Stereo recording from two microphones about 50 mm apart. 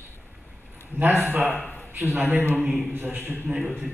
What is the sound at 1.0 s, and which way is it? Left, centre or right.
Speech, right.